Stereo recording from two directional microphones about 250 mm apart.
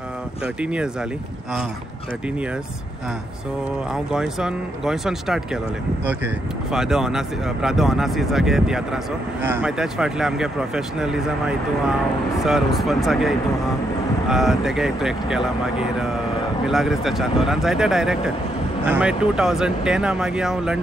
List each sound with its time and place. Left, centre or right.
0.6 s speech: centre
3.9 s speech: centre
6.7 s speech: centre